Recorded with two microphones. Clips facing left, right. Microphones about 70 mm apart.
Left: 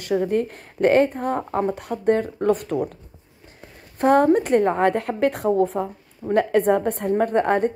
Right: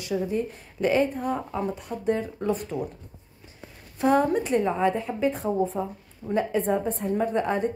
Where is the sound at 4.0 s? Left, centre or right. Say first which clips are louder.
Left 5 dB; left.